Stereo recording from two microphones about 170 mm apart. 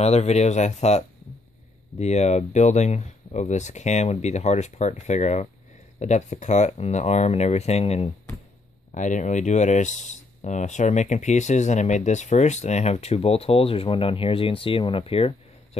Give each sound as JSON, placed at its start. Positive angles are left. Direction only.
{"t": 0.0, "sound": "speech", "side_deg": 40}